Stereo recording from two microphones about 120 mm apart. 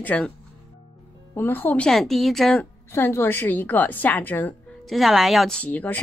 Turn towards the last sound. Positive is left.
turn(degrees=15)  # may be behind; listen again after turning